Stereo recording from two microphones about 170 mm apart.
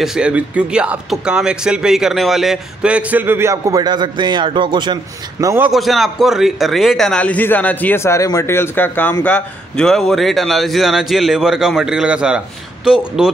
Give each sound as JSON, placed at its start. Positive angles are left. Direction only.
{"t": 0.0, "sound": "speech", "side_deg": -5}
{"t": 5.4, "sound": "speech", "side_deg": -15}
{"t": 5.7, "sound": "a man's voice", "side_deg": 0}